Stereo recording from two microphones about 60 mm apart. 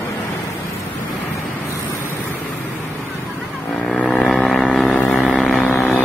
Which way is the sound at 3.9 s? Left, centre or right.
Centre.